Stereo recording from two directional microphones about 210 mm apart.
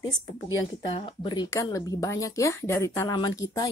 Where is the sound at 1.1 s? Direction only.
20° left (ahead or behind).